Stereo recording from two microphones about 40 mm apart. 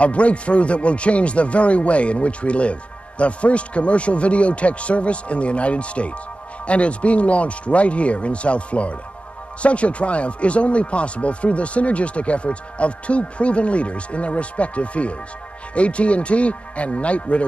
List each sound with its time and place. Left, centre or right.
0.0 s speech: left